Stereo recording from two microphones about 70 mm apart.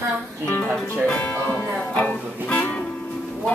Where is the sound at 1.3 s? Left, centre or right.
Left.